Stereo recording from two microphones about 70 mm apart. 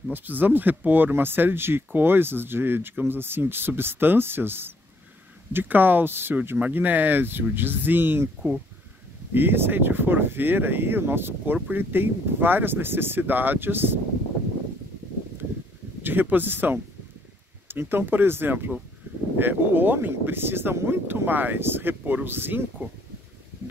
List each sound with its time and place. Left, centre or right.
0.1 s speech: right
9.3 s speech: right
16.0 s speech: right